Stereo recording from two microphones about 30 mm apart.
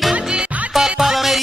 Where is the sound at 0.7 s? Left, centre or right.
Centre.